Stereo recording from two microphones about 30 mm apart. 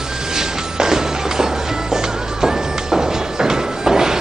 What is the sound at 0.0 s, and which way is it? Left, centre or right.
Music, centre.